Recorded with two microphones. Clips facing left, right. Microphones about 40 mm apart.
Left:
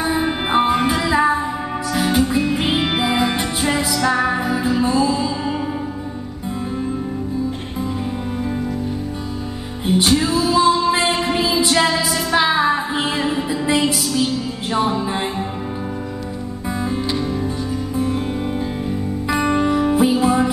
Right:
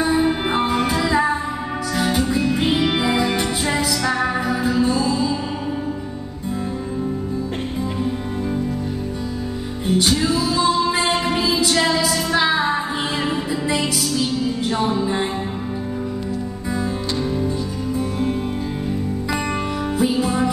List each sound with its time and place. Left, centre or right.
0.1 s music: left
2.3 s music: centre
10.0 s music: centre
13.7 s music: left
19.4 s music: centre